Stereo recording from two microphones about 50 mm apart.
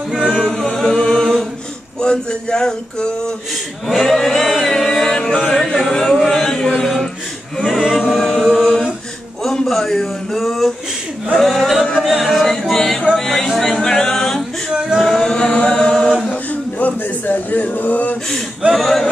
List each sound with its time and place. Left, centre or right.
0.1 s choir: centre
0.4 s chant: centre
3.8 s chant: centre
5.6 s speech: centre
6.8 s a sound: centre
7.5 s a capella: centre
9.4 s a man's voice: centre
12.0 s a sound: centre
13.6 s a capella: centre
14.7 s male singing: centre
15.0 s chant: centre
16.3 s a sound: left
18.8 s speech: centre